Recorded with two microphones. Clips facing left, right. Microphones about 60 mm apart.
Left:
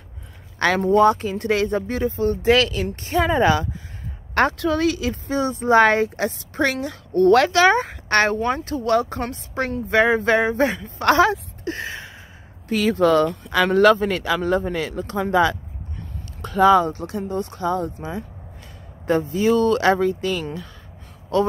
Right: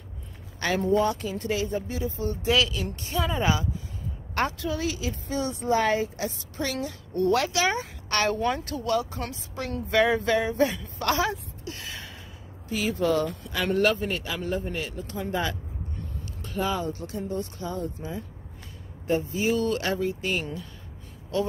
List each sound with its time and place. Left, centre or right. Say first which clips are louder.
0.6 s speech: left 7 dB; left
0.9 s speech: left 8 dB; left
3.3 s speech: left 8 dB; left
5.4 s speech: left 7 dB; left
5.7 s speech: left 9 dB; left
7.2 s speech: left 9 dB; left
8.1 s speech: left 6 dB; left
8.9 s speech: left 7 dB; left
9.8 s speech: left 5 dB; left
11.6 s a sound: left 9 dB; left
12.6 s speech: left 8 dB; left
16.8 s speech: left 6 dB; left
19.3 s speech: left 7 dB; left
21.3 s speech: left 8 dB; left